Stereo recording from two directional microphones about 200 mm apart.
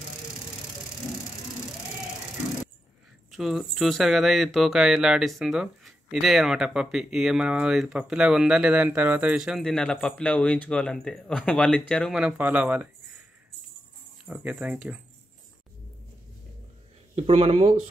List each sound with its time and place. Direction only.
3.3 s speech: centre (ahead or behind)
14.2 s speech: 5° right (ahead or behind)
17.1 s speech: 30° right (ahead or behind)